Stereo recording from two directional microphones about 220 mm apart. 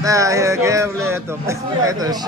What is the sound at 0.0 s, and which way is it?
Music, 15° right (ahead or behind).